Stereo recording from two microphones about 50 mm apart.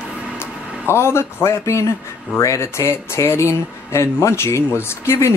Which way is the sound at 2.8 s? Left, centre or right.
Left.